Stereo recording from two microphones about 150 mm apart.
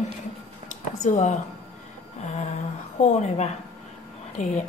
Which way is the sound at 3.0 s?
50° left (ahead or behind).